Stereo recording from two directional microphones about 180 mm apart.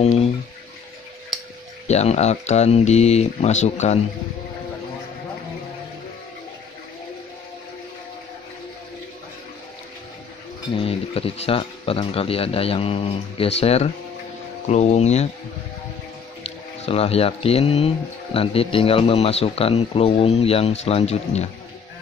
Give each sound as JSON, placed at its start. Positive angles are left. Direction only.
{"t": 1.9, "sound": "speech", "side_deg": 35}
{"t": 10.8, "sound": "speech", "side_deg": 30}
{"t": 16.4, "sound": "speech", "side_deg": 35}